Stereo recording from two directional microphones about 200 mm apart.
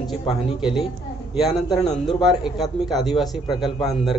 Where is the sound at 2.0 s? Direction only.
Centre (ahead or behind).